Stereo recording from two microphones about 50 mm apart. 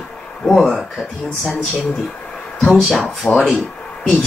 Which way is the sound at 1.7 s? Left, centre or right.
Centre.